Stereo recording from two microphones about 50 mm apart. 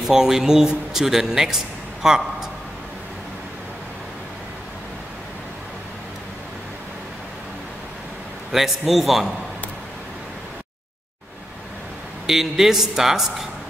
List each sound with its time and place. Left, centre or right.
0.0 s speech: centre
8.5 s a man's voice: centre
12.3 s speech: centre